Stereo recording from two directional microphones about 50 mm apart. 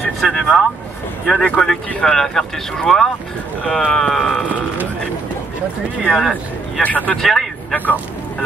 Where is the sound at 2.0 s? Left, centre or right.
Centre.